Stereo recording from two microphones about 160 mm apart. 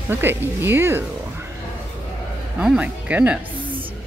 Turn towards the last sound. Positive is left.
turn(degrees=-10)  # may be behind; listen again after turning